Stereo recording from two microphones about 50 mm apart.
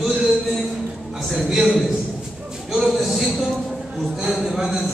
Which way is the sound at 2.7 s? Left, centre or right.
Centre.